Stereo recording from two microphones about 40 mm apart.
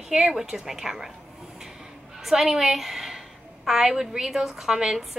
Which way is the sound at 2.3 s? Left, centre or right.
Centre.